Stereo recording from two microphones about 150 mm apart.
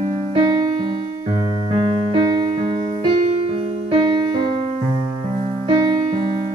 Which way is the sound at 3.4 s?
40° right (ahead or behind).